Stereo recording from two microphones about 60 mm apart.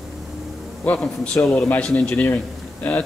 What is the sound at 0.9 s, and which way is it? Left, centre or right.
A man's voice, centre.